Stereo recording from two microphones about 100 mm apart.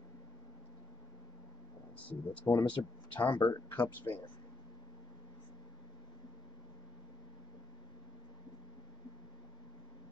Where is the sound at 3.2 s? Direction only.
55° left (ahead or behind).